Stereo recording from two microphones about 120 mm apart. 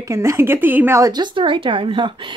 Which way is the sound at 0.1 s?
25° right (ahead or behind).